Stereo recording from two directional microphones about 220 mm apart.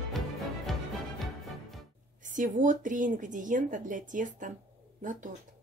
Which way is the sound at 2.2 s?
35° right (ahead or behind).